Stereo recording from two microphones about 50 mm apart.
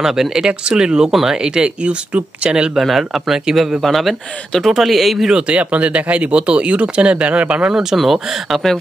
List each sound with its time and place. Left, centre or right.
0.0 s speech: centre
2.8 s speech: centre
5.3 s speech: right
7.6 s speech: centre